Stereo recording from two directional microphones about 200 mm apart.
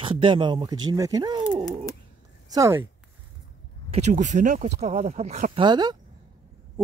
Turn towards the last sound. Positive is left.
turn(degrees=-20)  # may be behind; listen again after turning